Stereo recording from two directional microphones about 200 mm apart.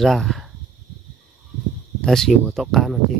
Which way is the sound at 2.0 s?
Centre (ahead or behind).